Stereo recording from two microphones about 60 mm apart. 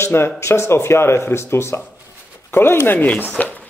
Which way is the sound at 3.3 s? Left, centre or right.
Left.